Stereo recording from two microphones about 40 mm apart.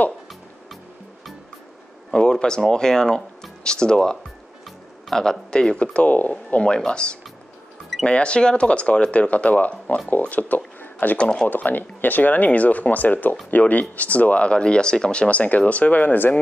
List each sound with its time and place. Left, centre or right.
2.1 s speech: left
10.4 s speech: left
10.8 s a sound: left
11.1 s speech: left
11.4 s speech: left